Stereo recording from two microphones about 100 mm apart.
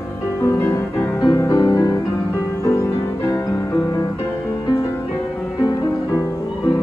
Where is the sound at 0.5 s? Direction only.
30° left (ahead or behind).